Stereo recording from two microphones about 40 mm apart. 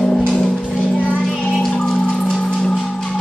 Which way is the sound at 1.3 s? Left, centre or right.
Centre.